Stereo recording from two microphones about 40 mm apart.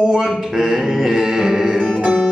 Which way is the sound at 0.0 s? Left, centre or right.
Centre.